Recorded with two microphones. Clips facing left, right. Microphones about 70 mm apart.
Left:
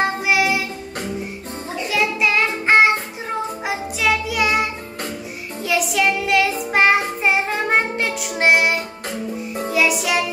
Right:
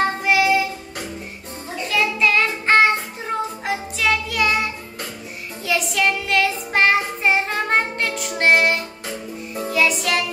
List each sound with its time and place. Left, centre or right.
0.2 s child singing: centre
1.9 s child singing: centre
5.7 s child singing: centre
9.7 s music: centre